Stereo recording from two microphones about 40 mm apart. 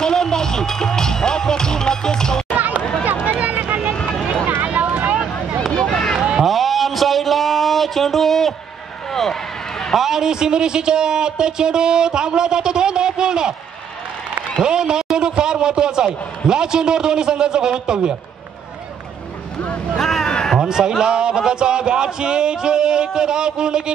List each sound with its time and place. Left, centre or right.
0.0 s music: centre
2.5 s run: right
3.3 s hubbub: right
3.9 s vehicle: left
4.7 s vehicle: right
5.7 s run: left
6.4 s a sound: centre
9.1 s run: centre
9.9 s speech: centre
14.6 s speech: centre
20.0 s a sound: centre
20.2 s a sound: centre
20.6 s a man's voice: centre